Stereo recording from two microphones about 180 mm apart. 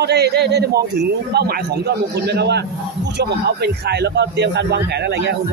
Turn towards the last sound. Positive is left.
turn(degrees=-65)  # may be behind; listen again after turning